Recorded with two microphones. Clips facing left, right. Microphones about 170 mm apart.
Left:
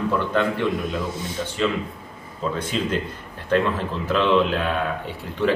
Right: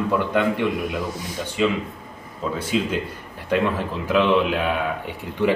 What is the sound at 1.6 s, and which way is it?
A man's voice, 10° right (ahead or behind).